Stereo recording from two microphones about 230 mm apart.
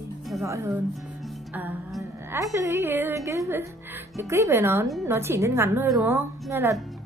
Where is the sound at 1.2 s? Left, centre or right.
Centre.